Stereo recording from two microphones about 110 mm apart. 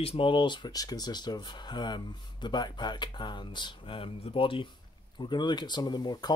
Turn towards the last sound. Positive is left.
turn(degrees=40)  # may be behind; listen again after turning